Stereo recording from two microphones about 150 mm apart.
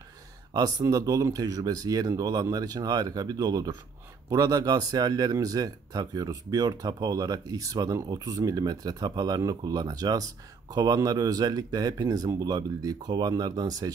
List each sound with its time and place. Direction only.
0.5 s speech: 25° right (ahead or behind)